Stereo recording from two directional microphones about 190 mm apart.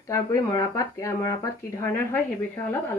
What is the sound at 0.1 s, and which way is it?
Speech, 15° left (ahead or behind).